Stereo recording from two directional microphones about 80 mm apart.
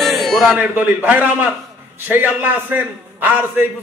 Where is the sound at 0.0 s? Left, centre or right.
Centre.